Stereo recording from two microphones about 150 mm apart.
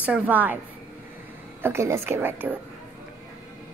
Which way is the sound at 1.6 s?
15° right (ahead or behind).